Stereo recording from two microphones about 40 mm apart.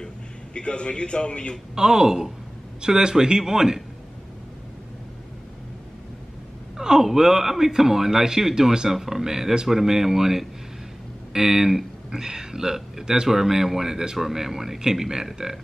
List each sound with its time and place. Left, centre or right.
0.6 s a man's voice: left
1.8 s speech: centre
6.8 s speech: centre